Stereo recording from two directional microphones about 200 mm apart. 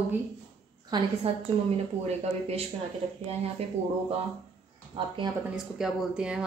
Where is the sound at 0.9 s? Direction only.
20° right (ahead or behind).